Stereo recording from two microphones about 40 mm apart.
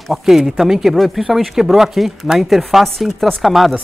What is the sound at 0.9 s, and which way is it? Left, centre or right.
Speech, centre.